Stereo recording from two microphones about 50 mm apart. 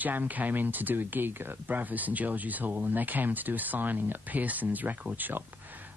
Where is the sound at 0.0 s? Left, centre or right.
Right.